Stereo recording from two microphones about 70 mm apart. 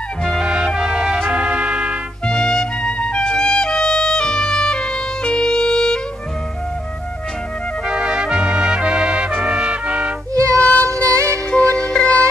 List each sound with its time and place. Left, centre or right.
0.2 s music: centre
2.2 s music: centre
7.8 s trumpet: centre
10.3 s music: right
11.5 s music: centre